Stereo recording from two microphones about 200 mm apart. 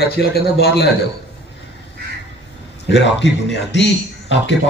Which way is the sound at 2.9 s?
60° left (ahead or behind).